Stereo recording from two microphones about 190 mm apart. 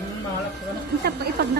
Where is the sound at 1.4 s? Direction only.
55° right (ahead or behind).